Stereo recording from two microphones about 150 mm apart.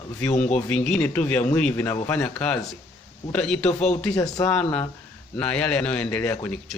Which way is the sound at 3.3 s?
5° left (ahead or behind).